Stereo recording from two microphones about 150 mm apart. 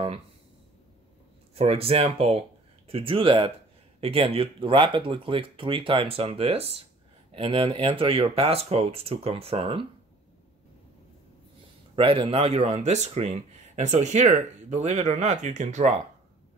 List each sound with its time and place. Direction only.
1.5 s speech: 40° right (ahead or behind)
11.9 s speech: 35° right (ahead or behind); by 15.9 s 50° right (ahead or behind)